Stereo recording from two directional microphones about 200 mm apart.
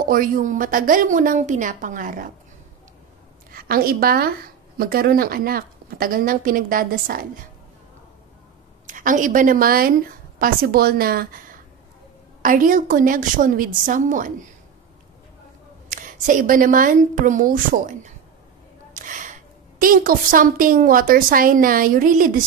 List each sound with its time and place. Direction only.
0.0 s a woman's voice: 45° right (ahead or behind)
3.5 s a woman's voice: 45° right (ahead or behind)
8.8 s a woman's voice: 40° right (ahead or behind)
15.9 s a woman's voice: 40° right (ahead or behind)